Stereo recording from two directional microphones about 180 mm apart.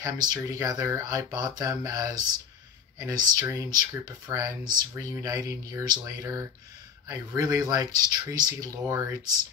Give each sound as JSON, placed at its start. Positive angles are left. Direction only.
{"t": 0.0, "sound": "speech", "side_deg": -20}